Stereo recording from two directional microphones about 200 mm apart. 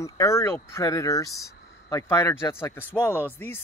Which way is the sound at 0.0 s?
15° left (ahead or behind).